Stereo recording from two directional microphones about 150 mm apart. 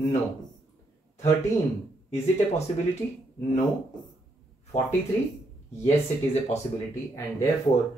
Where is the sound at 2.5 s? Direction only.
45° left (ahead or behind).